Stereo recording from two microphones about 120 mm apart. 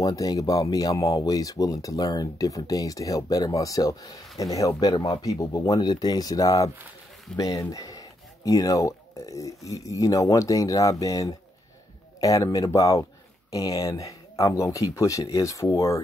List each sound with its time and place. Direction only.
0.0 s speech: 30° left (ahead or behind)